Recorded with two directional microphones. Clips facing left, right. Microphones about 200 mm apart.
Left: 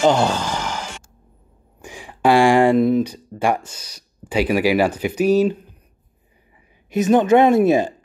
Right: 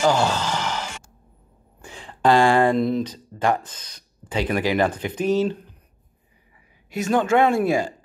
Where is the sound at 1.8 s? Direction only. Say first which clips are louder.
Left 2 dB; 10° left (ahead or behind).